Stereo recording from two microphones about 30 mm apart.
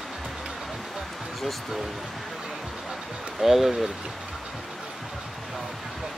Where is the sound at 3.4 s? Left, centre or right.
Centre.